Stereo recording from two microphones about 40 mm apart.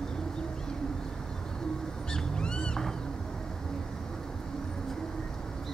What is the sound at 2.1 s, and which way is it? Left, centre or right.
Owl, left.